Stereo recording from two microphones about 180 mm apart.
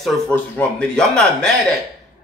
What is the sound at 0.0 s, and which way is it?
A man's voice, 5° left (ahead or behind).